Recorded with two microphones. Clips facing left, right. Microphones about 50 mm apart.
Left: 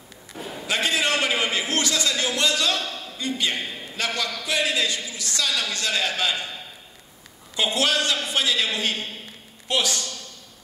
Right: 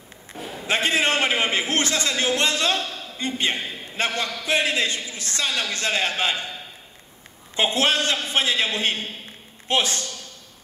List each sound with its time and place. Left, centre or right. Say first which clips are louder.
0.3 s a man's voice: right 3 dB; right
7.5 s a man's voice: right 2 dB; right